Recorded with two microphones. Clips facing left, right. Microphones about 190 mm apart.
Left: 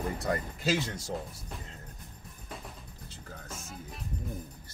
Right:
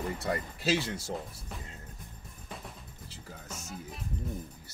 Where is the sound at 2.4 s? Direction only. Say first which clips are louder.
Even; centre (ahead or behind).